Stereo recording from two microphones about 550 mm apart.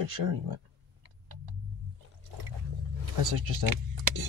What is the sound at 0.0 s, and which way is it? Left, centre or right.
Speech, right.